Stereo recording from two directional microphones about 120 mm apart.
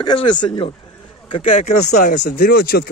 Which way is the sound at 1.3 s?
85° left.